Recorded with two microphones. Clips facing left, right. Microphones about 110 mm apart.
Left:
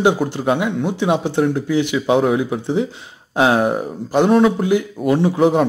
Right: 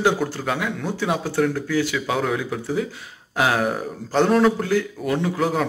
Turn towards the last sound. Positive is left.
turn(degrees=25)  # may be behind; listen again after turning